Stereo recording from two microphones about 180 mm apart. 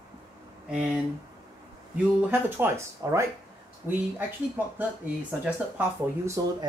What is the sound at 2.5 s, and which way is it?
Speech, 15° right (ahead or behind).